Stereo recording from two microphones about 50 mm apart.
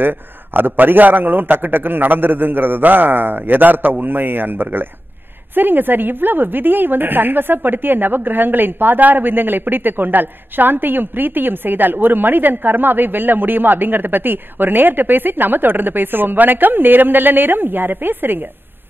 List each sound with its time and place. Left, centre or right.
0.0 s a woman's voice: right